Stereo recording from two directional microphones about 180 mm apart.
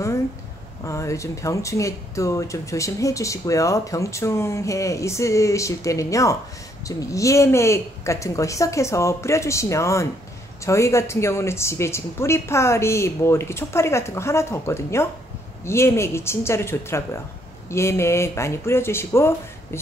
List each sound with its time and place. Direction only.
0.8 s speech: 15° left (ahead or behind)